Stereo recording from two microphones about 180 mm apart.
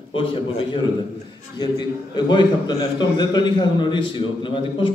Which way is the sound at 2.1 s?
25° left (ahead or behind).